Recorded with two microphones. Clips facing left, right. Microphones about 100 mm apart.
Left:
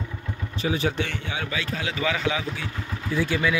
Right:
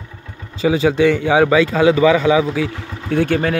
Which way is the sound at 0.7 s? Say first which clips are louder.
Right 12 dB; 90° right.